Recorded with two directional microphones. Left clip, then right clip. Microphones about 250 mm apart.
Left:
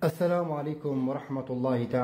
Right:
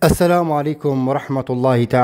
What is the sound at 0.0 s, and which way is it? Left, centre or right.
Speech, right.